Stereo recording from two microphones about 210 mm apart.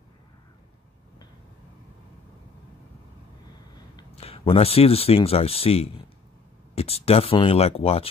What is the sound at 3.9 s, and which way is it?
Speech, 30° left (ahead or behind).